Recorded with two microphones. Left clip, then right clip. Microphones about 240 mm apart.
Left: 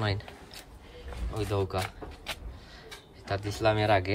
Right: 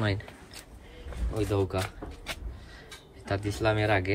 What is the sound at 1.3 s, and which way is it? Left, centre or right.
Speech, centre.